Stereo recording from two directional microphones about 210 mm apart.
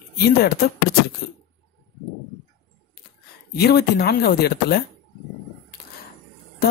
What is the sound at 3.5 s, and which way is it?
Speech, 50° left (ahead or behind).